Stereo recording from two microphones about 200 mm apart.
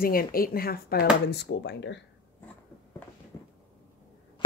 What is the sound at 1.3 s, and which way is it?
Speech, 60° left (ahead or behind).